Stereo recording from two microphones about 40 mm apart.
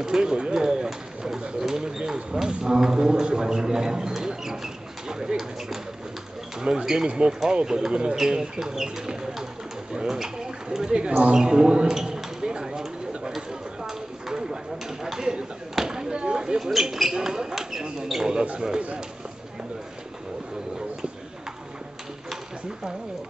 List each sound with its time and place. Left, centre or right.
0.0 s speech: centre
5.0 s a sound: centre
6.6 s speech: centre
8.2 s speech: centre
11.0 s speech: right
11.3 s a sound: centre
16.8 s speech: centre
18.4 s speech: right